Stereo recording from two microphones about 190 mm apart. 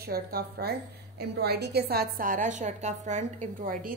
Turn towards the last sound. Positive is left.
turn(degrees=-45)  # may be behind; listen again after turning